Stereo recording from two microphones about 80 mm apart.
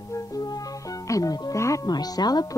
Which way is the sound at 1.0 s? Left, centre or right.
Left.